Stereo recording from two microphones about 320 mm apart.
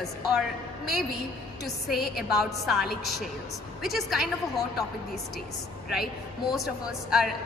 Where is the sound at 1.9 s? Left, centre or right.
Left.